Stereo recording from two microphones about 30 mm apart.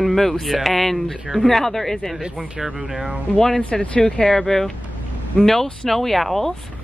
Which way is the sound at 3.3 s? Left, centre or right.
Centre.